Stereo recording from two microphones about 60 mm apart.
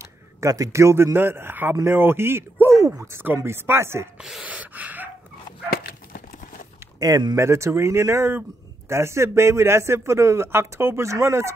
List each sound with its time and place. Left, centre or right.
0.0 s a sound: right
0.7 s a man's voice: right
4.2 s speech: centre
4.5 s a sound: right
7.0 s speech: right
7.3 s a man's voice: right